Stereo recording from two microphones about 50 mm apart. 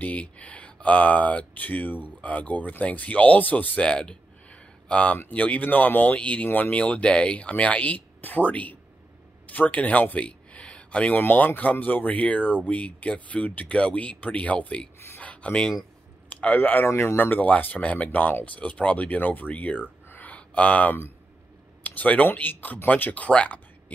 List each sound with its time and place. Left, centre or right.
0.0 s speech: left
11.1 s speech: left
15.1 s a sound: left
16.3 s speech: left
20.2 s a sound: left
21.8 s speech: left